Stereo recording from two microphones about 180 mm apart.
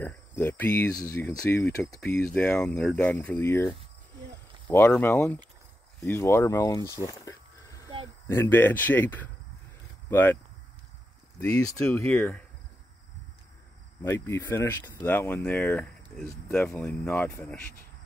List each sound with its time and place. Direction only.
0.0 s cricket: 10° left (ahead or behind)
1.2 s speech: 5° left (ahead or behind)
7.1 s a sound: 20° left (ahead or behind)
8.3 s speech: 10° left (ahead or behind)
11.8 s speech: 10° left (ahead or behind)
14.0 s speech: 15° left (ahead or behind)